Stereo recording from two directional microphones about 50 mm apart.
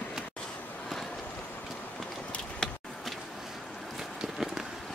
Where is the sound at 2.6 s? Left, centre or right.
Centre.